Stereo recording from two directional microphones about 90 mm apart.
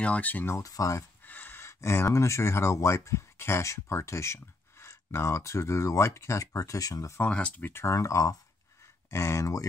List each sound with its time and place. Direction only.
0.0 s speech: 15° left (ahead or behind)
0.6 s speech: 40° left (ahead or behind)
1.2 s speech: 20° left (ahead or behind); by 7.2 s 40° left (ahead or behind)
7.2 s speech: 15° left (ahead or behind); by 9.7 s 35° left (ahead or behind)